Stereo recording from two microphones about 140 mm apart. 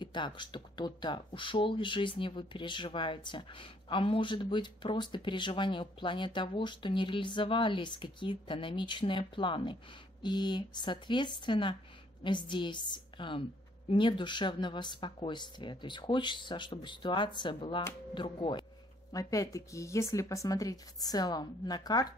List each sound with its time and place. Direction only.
0.0 s speech: 35° left (ahead or behind)
19.1 s speech: 25° left (ahead or behind)